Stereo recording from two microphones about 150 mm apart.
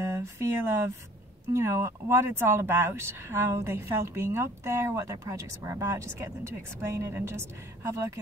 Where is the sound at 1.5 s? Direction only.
20° right (ahead or behind).